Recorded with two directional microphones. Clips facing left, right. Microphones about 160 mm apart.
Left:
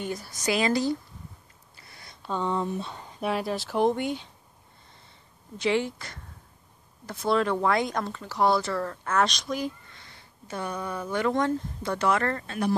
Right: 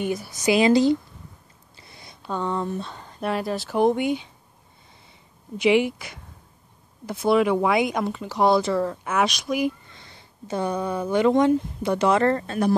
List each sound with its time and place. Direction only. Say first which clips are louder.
0.5 s speech: right 7 dB; 20° right (ahead or behind)
1.8 s a sound: right 4 dB; 20° right (ahead or behind)
2.2 s speech: right 1 dB; centre (ahead or behind)
5.6 s speech: right 6 dB; 15° right (ahead or behind)
9.9 s speech: right 5 dB; 25° right (ahead or behind)